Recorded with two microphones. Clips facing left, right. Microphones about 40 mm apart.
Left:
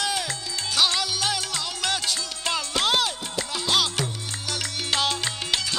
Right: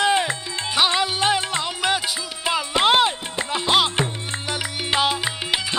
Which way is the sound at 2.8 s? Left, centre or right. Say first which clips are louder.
Right 8 dB; right.